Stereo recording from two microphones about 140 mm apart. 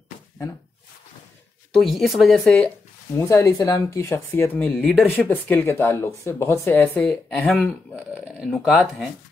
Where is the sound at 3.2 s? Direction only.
20° left (ahead or behind); by 9.0 s centre (ahead or behind).